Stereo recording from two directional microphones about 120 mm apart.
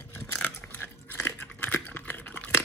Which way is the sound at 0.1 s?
20° left (ahead or behind).